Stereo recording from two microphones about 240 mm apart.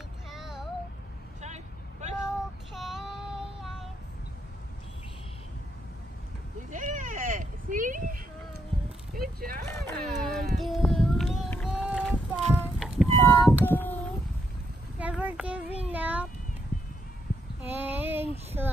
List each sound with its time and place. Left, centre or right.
0.3 s child singing: centre
1.4 s vehicle: right
2.8 s child singing: centre
6.7 s a sound: right
9.2 s a sound: right
9.7 s a sound: centre
10.5 s run: centre
13.7 s child singing: centre
15.0 s child singing: centre
17.6 s child singing: centre